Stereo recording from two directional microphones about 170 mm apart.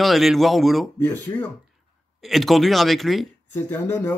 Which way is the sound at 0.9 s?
10° left (ahead or behind).